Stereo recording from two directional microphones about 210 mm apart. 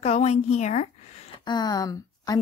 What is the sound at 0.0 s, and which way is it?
Speech, 30° left (ahead or behind).